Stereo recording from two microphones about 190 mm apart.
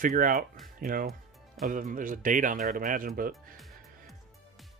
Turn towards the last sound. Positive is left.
turn(degrees=0)  # may be behind; listen again after turning